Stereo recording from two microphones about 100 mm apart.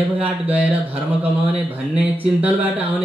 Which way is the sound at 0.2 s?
15° right (ahead or behind).